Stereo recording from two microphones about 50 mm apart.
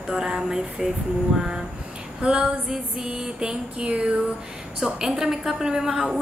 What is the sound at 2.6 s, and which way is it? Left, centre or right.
A woman's voice, centre.